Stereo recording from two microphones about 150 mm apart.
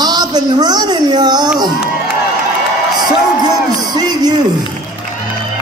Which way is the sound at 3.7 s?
25° right (ahead or behind).